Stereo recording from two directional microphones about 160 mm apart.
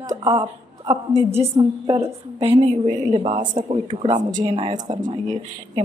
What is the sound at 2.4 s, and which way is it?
Speech, 40° right (ahead or behind).